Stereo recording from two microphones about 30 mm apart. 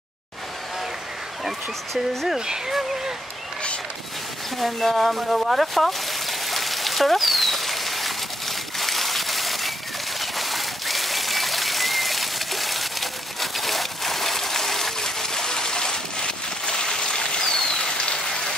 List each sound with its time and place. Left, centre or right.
2.2 s speech: right
4.6 s speech: centre
4.9 s a sound: centre; by 17.5 s left
17.5 s rain: left